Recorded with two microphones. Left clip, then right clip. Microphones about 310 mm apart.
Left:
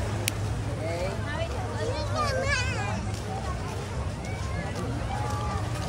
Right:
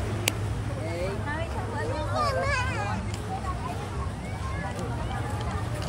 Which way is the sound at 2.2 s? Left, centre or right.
Right.